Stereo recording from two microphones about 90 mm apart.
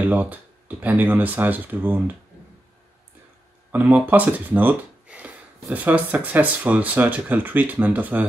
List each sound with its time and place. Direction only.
0.0 s speech: 20° right (ahead or behind)
3.7 s speech: 20° right (ahead or behind)